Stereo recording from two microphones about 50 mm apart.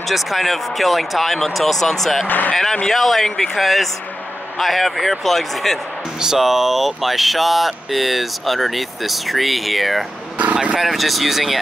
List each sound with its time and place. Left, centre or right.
0.0 s speech: centre
2.2 s speech: left
2.5 s speech: centre
6.1 s speech: centre
10.3 s a sound: right
10.8 s speech: centre